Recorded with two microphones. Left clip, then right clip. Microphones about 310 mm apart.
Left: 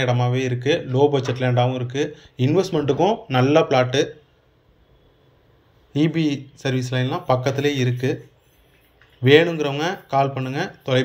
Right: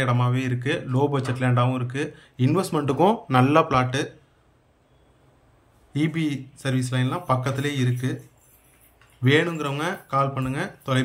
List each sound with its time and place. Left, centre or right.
0.0 s speech: centre
5.9 s speech: centre
9.2 s speech: centre